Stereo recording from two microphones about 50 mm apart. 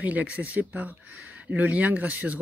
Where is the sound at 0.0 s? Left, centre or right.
Right.